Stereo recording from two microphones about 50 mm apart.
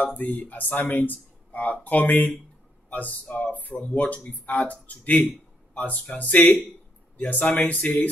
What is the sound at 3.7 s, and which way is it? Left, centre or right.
Speech, left.